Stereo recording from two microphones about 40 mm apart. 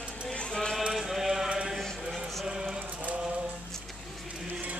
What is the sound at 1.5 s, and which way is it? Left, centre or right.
Sheep, centre.